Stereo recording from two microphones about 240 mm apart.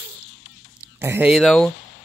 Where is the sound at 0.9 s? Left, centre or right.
Centre.